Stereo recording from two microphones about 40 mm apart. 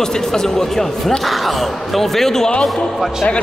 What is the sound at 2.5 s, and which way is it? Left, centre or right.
Speech, left.